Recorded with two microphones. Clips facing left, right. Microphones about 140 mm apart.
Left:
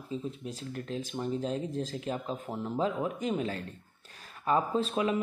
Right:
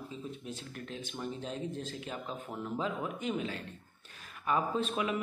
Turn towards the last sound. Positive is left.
turn(degrees=35)  # may be behind; listen again after turning